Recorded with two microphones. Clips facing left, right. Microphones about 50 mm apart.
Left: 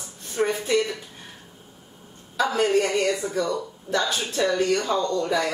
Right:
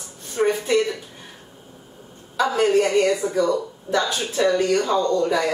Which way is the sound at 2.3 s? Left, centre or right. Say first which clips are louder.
Right 3 dB; centre.